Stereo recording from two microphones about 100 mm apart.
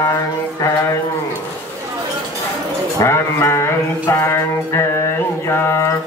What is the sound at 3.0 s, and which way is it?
Music, 25° left (ahead or behind).